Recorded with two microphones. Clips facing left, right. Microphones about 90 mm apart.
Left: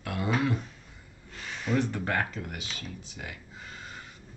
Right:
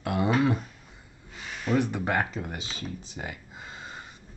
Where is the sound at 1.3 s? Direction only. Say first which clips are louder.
Right 2 dB; 10° right (ahead or behind).